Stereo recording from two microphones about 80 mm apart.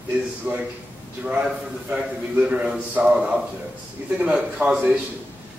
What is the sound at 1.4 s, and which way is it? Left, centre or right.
A man's voice, centre.